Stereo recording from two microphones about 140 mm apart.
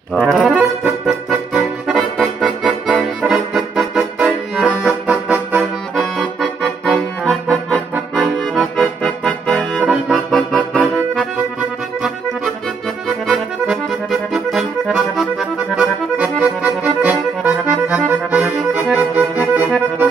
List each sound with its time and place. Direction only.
0.1 s music: 5° left (ahead or behind)
0.8 s accordion: 5° right (ahead or behind)
4.8 s music: 10° right (ahead or behind)
5.6 s accordion: centre (ahead or behind)
9.8 s music: centre (ahead or behind)
14.3 s music: centre (ahead or behind)